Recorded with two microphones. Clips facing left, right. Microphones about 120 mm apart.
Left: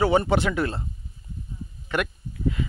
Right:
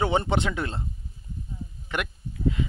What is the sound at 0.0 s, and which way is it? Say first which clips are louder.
Speech: left 4 dB; 20° right (ahead or behind).